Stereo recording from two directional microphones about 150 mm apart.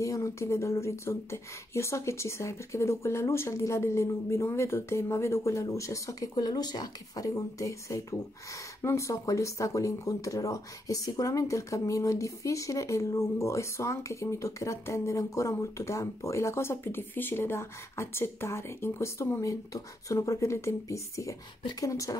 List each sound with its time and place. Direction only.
0.0 s speech: 20° left (ahead or behind)